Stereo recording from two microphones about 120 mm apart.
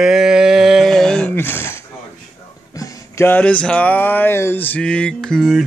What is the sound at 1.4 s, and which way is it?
Speech, 20° left (ahead or behind).